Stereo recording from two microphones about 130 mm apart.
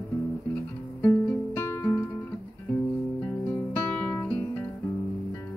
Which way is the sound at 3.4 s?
10° left (ahead or behind).